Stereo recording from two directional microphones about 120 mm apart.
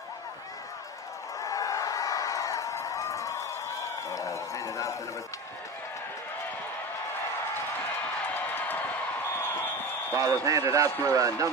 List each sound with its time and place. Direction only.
1.4 s a sound: 30° left (ahead or behind)
4.1 s run: 25° left (ahead or behind)
8.3 s crowd: 15° left (ahead or behind)
10.1 s speech: 30° right (ahead or behind)